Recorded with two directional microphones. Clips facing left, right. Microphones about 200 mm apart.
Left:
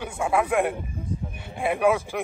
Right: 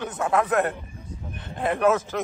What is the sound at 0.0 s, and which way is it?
Speech, 10° left (ahead or behind).